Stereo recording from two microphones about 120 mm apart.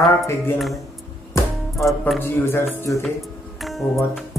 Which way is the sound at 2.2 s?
20° left (ahead or behind).